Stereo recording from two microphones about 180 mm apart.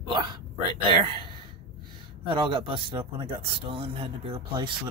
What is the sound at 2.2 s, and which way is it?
Speech, 25° right (ahead or behind).